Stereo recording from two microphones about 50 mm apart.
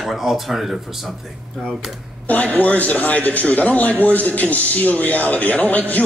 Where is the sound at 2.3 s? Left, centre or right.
Left.